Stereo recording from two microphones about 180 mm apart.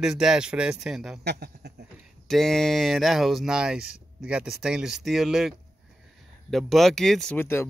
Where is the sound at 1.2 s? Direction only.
65° right (ahead or behind).